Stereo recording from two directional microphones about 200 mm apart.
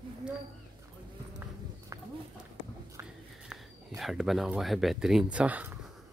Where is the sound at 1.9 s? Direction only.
15° right (ahead or behind).